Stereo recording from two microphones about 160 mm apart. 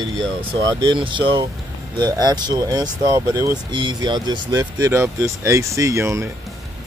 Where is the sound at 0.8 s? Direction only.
30° right (ahead or behind).